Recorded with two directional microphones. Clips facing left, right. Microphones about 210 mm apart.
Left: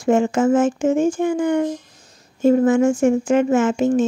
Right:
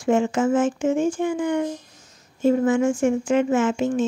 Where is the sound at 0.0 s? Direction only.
45° left (ahead or behind).